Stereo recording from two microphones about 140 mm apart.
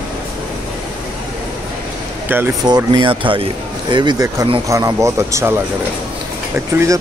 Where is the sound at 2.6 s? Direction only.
35° right (ahead or behind); by 7.0 s 20° right (ahead or behind).